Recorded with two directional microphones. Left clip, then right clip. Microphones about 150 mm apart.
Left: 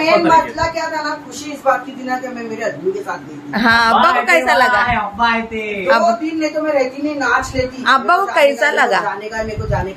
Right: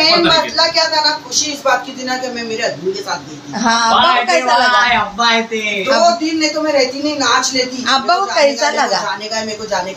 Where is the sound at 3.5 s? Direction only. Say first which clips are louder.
Left 1 dB; 25° left (ahead or behind).